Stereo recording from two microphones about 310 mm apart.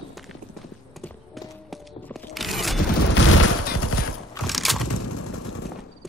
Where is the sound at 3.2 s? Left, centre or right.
Left.